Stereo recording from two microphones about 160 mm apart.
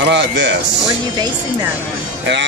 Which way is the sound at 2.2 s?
90° right.